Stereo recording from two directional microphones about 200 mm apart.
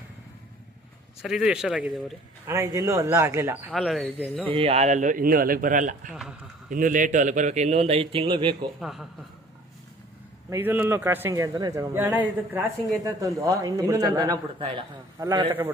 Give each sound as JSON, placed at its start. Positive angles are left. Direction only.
{"t": 1.2, "sound": "speech", "side_deg": -5}
{"t": 2.4, "sound": "a man's voice", "side_deg": -15}
{"t": 3.7, "sound": "speech", "side_deg": 0}
{"t": 4.5, "sound": "a man's voice", "side_deg": -30}
{"t": 10.5, "sound": "a man's voice", "side_deg": -10}